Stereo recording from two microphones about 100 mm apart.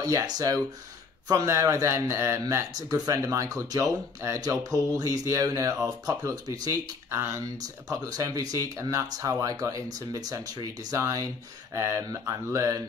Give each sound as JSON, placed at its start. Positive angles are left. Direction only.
{"t": 0.0, "sound": "speech", "side_deg": -35}